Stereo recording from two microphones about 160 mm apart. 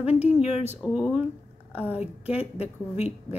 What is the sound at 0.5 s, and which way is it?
Speech, 45° left (ahead or behind).